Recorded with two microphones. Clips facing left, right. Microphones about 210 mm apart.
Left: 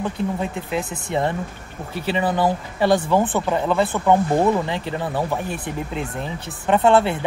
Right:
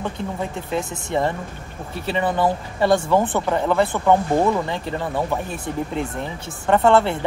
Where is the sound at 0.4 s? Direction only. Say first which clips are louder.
Even; 15° left (ahead or behind).